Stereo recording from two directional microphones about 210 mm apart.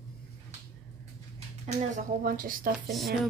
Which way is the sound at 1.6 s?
35° right (ahead or behind).